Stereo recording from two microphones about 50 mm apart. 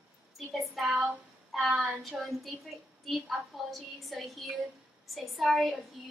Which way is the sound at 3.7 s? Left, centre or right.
Centre.